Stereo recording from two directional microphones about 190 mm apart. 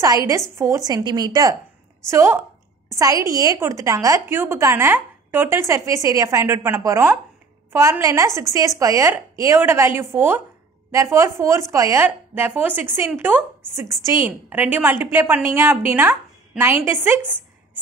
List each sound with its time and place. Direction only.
0.0 s a woman's voice: 15° right (ahead or behind)